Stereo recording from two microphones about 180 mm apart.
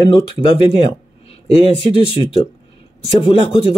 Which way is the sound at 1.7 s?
30° left (ahead or behind).